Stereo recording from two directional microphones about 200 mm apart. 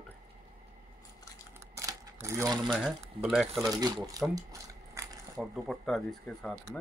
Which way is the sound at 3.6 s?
20° right (ahead or behind).